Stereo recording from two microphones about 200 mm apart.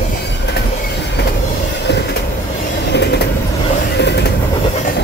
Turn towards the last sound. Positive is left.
turn(degrees=60)  # may be behind; listen again after turning